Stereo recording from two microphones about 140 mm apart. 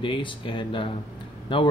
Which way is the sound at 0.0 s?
35° left (ahead or behind).